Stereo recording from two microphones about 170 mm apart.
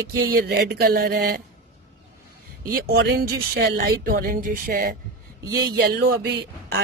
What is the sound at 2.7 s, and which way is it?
A man's voice, 65° right (ahead or behind).